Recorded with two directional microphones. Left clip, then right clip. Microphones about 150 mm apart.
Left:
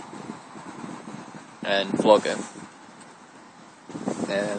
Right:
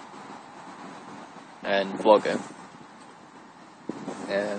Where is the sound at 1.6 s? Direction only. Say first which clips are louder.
Left 1 dB; 5° left (ahead or behind).